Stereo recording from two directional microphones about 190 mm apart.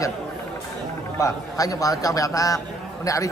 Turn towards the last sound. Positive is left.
turn(degrees=15)  # may be behind; listen again after turning